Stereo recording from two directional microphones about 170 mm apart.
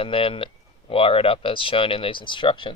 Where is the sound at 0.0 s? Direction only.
30° left (ahead or behind).